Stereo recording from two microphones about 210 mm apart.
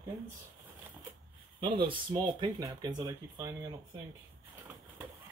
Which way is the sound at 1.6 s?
25° right (ahead or behind).